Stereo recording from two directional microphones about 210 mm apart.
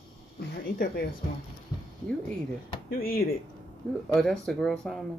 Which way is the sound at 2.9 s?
45° left (ahead or behind).